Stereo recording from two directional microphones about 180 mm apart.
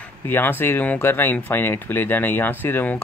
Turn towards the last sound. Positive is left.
turn(degrees=10)  # may be behind; listen again after turning